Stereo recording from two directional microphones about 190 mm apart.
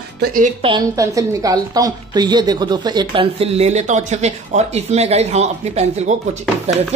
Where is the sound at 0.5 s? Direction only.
25° right (ahead or behind).